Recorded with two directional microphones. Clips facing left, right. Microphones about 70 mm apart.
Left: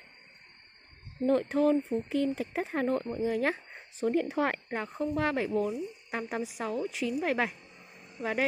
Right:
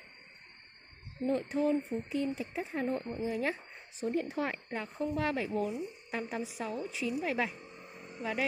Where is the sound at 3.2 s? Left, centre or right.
Left.